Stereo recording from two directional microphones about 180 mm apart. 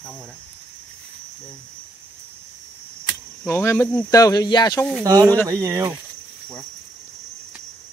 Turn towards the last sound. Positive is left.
turn(degrees=-20)  # may be behind; listen again after turning